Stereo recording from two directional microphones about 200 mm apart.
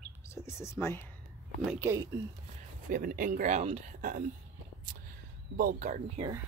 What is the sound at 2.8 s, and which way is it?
Speech, 45° right (ahead or behind).